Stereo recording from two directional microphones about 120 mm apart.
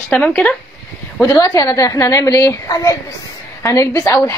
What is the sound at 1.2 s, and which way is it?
A woman's voice, 30° left (ahead or behind).